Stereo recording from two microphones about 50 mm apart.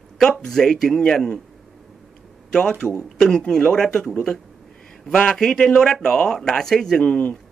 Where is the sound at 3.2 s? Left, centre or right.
Centre.